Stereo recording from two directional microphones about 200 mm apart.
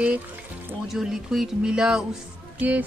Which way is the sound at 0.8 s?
Centre (ahead or behind).